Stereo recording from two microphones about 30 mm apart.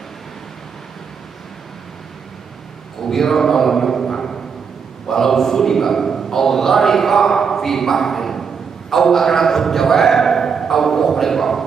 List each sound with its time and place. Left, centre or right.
3.0 s a man's voice: centre
4.0 s a sound: centre
5.0 s a man's voice: centre